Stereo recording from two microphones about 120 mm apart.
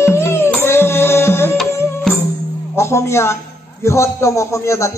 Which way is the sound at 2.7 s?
25° left (ahead or behind).